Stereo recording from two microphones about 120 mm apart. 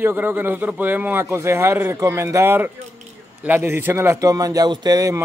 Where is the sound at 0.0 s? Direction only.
15° right (ahead or behind).